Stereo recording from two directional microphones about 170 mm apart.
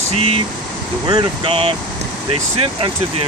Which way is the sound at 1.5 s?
35° right (ahead or behind).